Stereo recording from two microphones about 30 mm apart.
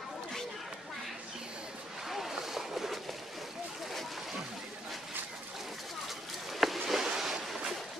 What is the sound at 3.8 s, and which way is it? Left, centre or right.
Slosh, centre.